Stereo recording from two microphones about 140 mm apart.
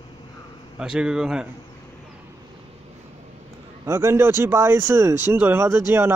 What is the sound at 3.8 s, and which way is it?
Speech, 20° right (ahead or behind).